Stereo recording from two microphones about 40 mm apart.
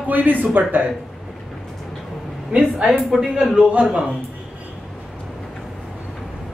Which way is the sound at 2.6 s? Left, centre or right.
Right.